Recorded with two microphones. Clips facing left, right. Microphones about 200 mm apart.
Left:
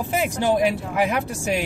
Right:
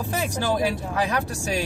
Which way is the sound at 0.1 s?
20° left (ahead or behind).